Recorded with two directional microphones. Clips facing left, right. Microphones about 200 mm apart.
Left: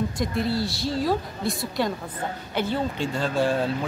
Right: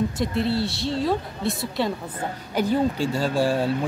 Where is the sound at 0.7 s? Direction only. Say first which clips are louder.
Right 1 dB; centre (ahead or behind).